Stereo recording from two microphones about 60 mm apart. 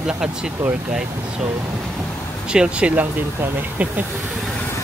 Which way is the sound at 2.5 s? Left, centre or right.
Centre.